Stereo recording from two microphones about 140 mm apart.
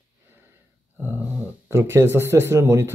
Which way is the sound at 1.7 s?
20° right (ahead or behind).